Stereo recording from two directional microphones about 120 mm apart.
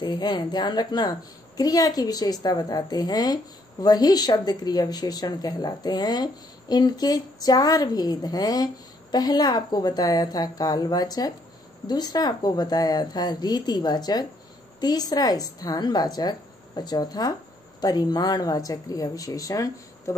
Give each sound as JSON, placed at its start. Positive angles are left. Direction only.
{"t": 0.0, "sound": "a woman's voice", "side_deg": 35}